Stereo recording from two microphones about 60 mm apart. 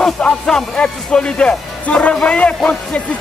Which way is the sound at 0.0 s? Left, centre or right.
Centre.